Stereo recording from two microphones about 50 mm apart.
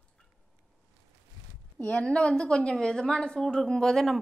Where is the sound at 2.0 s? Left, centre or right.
Centre.